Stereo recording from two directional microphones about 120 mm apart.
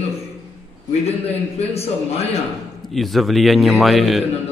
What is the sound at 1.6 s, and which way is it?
Speech, 60° left (ahead or behind).